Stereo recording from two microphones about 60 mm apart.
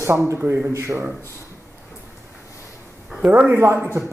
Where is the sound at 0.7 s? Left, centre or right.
Right.